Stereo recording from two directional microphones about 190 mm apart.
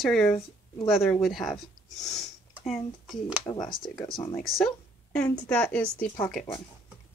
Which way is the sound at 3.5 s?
25° left (ahead or behind).